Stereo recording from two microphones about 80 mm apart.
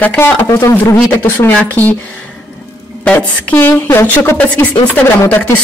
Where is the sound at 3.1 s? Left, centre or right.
Centre.